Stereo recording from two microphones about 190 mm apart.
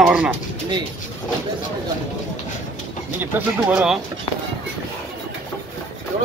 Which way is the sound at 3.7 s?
5° right (ahead or behind).